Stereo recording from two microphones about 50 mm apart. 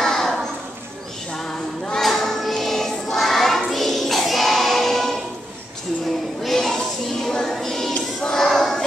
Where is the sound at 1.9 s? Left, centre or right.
Centre.